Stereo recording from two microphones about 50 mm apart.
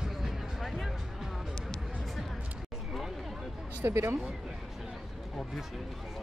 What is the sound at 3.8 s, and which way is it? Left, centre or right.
Speech, right.